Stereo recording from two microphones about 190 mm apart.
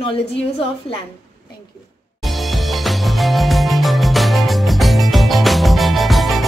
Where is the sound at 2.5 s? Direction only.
Centre (ahead or behind).